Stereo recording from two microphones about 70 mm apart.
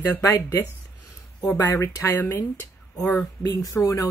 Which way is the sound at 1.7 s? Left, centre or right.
Left.